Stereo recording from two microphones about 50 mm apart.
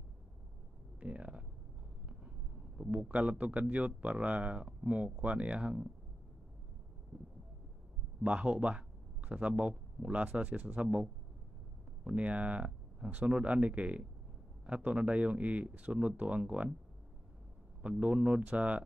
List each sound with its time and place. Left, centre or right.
0.9 s a sound: right
2.9 s speech: right
8.2 s speech: right
17.8 s speech: right